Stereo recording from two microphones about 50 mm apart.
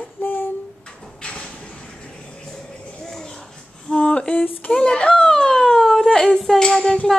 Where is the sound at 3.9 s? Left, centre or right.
Centre.